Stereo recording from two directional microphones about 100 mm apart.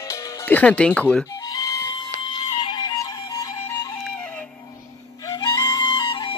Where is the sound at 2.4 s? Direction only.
80° left.